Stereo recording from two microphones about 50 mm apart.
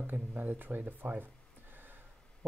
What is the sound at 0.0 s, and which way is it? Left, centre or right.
Speech, right.